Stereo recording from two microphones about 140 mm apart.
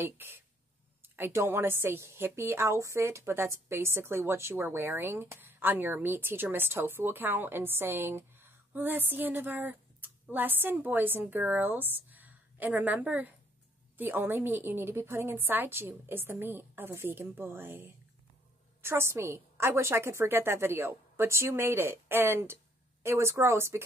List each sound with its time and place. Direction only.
0.0 s a woman's voice: 15° right (ahead or behind)